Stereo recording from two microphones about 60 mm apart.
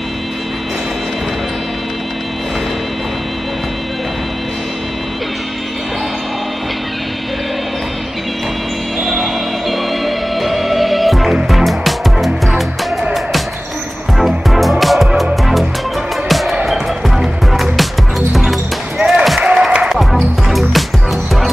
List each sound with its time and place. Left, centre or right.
9.0 s music: centre
14.1 s music: centre
16.3 s music: centre
19.4 s applause: centre
19.9 s music: centre